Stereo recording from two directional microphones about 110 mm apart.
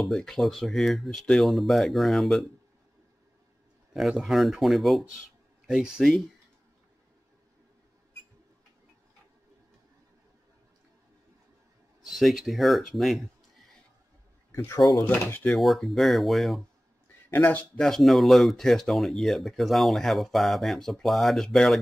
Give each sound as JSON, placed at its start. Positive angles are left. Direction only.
{"t": 0.0, "sound": "speech", "side_deg": 5}
{"t": 3.9, "sound": "speech", "side_deg": 0}
{"t": 12.2, "sound": "speech", "side_deg": 0}
{"t": 14.5, "sound": "speech", "side_deg": 25}
{"t": 15.0, "sound": "speech", "side_deg": 15}
{"t": 15.5, "sound": "speech", "side_deg": 0}
{"t": 17.3, "sound": "speech", "side_deg": 20}
{"t": 17.7, "sound": "speech", "side_deg": 5}